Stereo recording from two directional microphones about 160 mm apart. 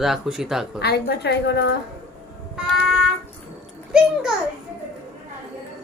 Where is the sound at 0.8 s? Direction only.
90° left.